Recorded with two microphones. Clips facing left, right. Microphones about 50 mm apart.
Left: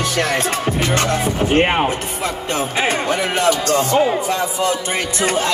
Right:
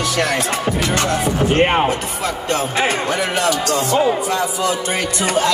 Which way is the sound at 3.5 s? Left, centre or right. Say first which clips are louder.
Left 1 dB; left.